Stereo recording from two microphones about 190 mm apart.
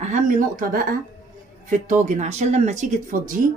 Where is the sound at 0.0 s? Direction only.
45° right (ahead or behind).